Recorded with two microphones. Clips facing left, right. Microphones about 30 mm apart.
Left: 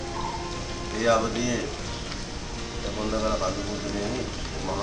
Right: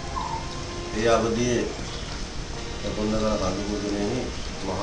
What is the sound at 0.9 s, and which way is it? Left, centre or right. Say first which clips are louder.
Speech: right 1 dB; centre.